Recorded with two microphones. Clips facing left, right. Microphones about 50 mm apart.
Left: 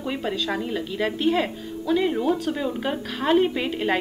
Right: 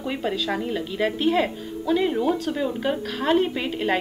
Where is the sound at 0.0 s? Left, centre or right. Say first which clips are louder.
Right 1 dB; centre.